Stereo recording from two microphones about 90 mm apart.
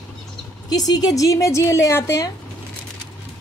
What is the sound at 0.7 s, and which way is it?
A woman's voice, 45° left (ahead or behind).